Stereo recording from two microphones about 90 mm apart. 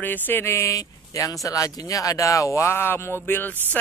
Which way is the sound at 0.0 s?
20° left (ahead or behind).